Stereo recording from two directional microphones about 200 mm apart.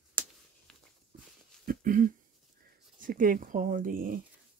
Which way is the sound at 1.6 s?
45° right (ahead or behind).